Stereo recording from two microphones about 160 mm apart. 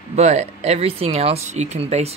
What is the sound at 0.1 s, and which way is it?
Speech, 45° right (ahead or behind).